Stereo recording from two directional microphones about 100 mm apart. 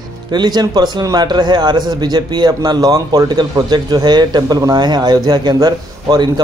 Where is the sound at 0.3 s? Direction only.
45° right (ahead or behind).